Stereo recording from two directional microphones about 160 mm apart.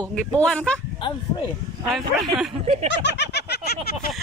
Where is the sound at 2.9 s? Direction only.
90° left.